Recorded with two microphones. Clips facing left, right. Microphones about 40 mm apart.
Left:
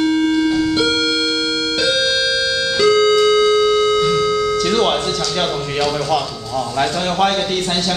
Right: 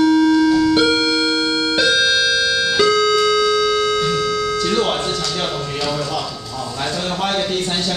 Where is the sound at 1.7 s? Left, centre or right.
Centre.